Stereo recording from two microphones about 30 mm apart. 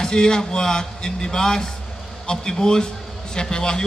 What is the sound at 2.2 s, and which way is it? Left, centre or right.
Speech, left.